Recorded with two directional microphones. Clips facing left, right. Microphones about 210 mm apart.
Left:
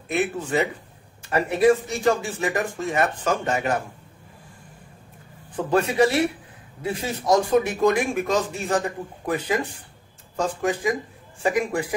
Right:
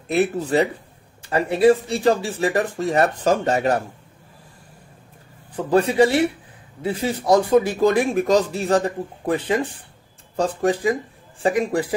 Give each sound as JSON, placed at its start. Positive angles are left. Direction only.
{"t": 0.1, "sound": "speech", "side_deg": -35}
{"t": 5.7, "sound": "speech", "side_deg": -30}